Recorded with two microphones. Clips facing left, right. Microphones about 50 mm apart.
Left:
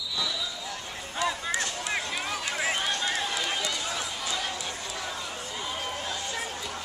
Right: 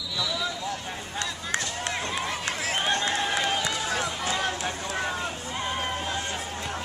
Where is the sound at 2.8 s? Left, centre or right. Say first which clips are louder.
Right 3 dB; right.